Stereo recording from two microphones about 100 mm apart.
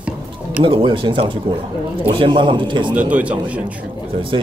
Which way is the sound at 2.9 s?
15° right (ahead or behind).